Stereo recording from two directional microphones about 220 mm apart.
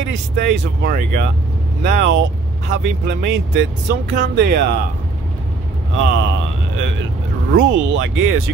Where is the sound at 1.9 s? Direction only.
50° right (ahead or behind).